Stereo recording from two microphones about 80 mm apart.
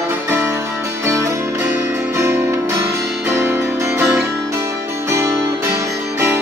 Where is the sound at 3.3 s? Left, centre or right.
Right.